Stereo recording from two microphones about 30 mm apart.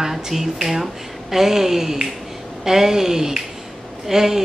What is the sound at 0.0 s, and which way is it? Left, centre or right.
A woman's voice, centre.